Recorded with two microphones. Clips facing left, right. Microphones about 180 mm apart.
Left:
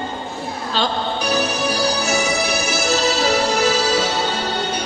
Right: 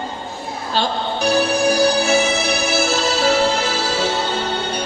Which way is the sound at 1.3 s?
50° right (ahead or behind).